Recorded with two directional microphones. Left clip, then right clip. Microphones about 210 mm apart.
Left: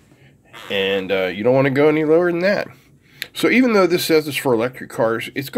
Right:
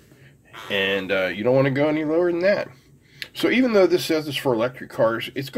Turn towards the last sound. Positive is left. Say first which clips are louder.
# left 2 dB
turn(degrees=25)  # may be behind; listen again after turning